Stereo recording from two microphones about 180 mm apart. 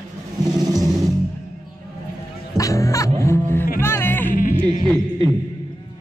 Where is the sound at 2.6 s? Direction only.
15° left (ahead or behind).